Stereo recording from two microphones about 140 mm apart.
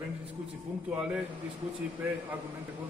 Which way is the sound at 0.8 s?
5° right (ahead or behind).